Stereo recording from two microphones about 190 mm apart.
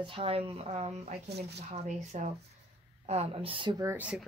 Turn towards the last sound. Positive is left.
turn(degrees=-10)  # may be behind; listen again after turning